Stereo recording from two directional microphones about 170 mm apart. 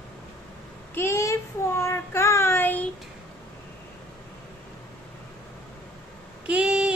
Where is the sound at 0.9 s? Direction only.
15° left (ahead or behind).